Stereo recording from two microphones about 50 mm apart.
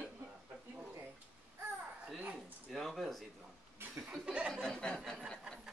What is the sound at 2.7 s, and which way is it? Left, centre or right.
Speech, centre.